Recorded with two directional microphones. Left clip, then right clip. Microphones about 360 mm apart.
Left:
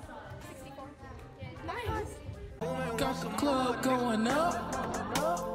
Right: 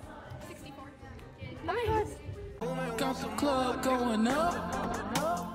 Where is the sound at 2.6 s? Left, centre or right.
Centre.